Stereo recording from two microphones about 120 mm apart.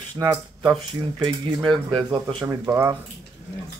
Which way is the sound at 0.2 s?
25° right (ahead or behind).